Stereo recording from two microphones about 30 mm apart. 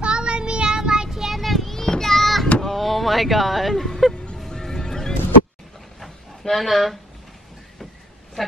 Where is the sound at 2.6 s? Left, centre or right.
Centre.